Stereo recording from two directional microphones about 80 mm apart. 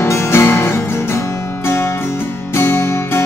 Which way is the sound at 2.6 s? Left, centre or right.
Left.